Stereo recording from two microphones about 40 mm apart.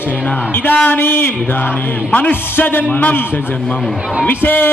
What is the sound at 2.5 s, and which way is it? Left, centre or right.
Speech, left.